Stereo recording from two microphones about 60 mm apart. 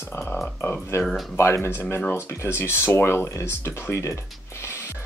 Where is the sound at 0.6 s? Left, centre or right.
Left.